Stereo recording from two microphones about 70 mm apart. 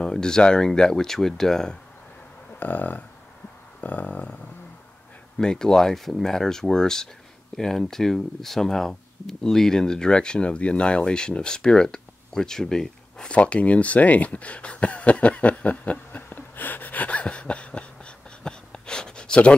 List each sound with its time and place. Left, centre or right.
0.0 s speech: centre
2.6 s a sound: left
5.4 s speech: centre